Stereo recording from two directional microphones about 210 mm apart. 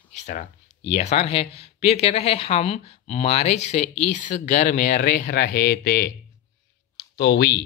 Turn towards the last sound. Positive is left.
turn(degrees=50)  # may be behind; listen again after turning